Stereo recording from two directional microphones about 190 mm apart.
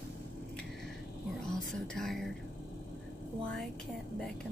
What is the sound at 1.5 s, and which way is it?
Speech, centre (ahead or behind).